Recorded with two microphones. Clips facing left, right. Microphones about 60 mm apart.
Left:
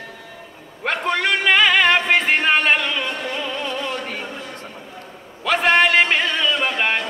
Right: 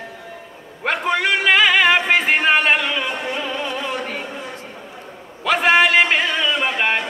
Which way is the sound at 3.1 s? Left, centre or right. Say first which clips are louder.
Right 2 dB; centre.